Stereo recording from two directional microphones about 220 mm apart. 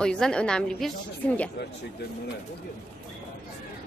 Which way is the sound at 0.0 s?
5° left (ahead or behind).